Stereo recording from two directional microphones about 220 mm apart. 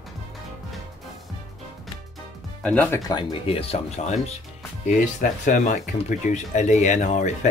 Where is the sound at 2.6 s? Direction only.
5° left (ahead or behind).